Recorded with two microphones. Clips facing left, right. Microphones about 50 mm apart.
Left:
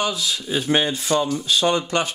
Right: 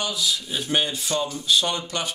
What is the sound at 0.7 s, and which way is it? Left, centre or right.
Speech, left.